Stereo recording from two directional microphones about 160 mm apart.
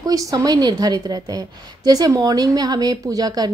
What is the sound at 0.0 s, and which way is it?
Speech, 20° right (ahead or behind).